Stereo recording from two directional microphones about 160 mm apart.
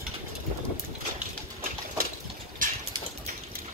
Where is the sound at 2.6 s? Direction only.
55° right (ahead or behind).